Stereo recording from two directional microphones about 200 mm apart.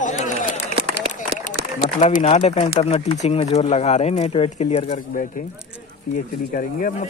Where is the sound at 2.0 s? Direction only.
35° left (ahead or behind).